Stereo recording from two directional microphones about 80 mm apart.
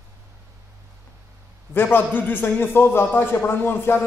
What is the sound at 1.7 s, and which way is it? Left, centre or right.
A man's voice, left.